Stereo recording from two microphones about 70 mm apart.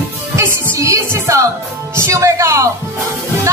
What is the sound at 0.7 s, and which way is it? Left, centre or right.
Music, right.